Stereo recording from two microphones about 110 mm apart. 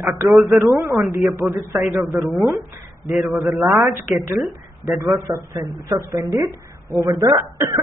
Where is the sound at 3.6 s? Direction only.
20° right (ahead or behind).